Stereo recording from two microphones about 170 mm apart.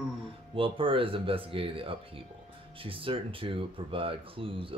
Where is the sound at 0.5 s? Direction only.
30° right (ahead or behind).